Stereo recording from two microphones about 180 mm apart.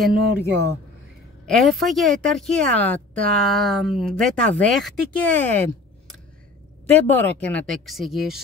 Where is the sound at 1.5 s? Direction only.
Centre (ahead or behind).